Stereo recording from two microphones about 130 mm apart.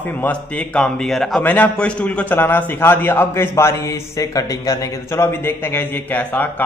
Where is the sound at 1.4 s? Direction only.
10° left (ahead or behind).